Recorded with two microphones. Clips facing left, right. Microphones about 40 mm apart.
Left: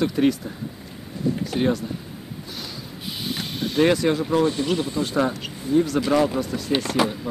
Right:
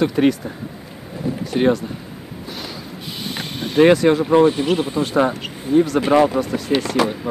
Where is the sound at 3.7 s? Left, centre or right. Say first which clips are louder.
Right 7 dB; centre.